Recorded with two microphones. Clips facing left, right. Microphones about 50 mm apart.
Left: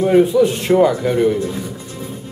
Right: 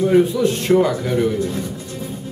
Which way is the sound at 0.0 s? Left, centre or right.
Centre.